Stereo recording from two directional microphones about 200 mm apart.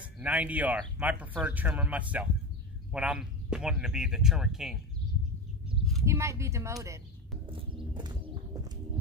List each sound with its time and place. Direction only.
0.0 s speech: 5° right (ahead or behind)
6.0 s speech: 15° right (ahead or behind)
7.4 s horse: 25° right (ahead or behind)